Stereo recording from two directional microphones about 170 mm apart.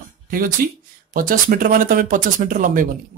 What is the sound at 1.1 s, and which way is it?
Speech, 55° right (ahead or behind).